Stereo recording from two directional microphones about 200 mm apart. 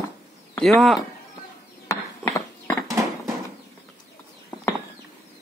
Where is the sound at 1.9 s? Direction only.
15° left (ahead or behind).